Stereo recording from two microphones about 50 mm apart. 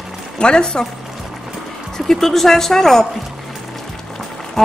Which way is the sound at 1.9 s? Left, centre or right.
Centre.